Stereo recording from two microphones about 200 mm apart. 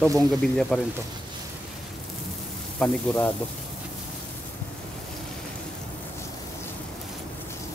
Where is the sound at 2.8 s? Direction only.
10° left (ahead or behind).